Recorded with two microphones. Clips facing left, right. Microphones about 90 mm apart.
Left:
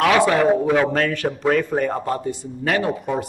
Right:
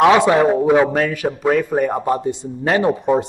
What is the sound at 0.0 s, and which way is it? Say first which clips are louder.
A man's voice: right 4 dB; 20° right (ahead or behind).